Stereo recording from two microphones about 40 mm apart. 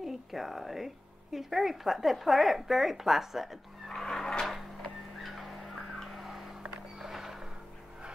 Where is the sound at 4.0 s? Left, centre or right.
Centre.